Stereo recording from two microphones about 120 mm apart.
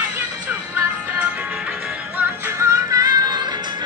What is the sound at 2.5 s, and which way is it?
Music, 25° right (ahead or behind).